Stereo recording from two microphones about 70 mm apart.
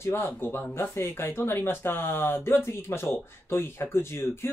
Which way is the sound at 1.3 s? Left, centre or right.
Left.